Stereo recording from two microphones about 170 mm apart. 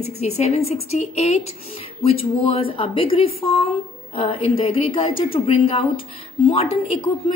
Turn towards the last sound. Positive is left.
turn(degrees=35)  # may be behind; listen again after turning